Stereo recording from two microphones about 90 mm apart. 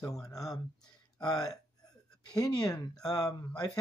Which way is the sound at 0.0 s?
40° left (ahead or behind).